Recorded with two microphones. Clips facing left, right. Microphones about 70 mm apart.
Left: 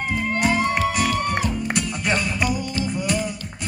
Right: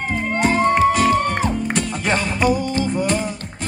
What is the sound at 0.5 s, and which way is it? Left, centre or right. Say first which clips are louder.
Music: right 8 dB; right.